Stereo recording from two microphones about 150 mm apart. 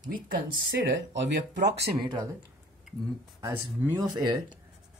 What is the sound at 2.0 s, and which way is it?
Speech, 25° right (ahead or behind).